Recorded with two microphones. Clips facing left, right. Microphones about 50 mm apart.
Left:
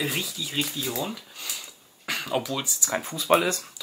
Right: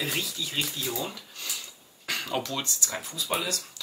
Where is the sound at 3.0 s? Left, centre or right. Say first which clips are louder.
Left 11 dB; left.